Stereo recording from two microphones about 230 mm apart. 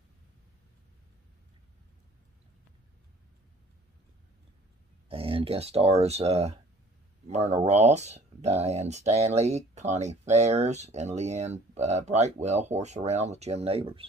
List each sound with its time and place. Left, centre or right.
5.0 s speech: right